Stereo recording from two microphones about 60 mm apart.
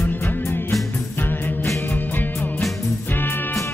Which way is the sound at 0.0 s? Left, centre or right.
Left.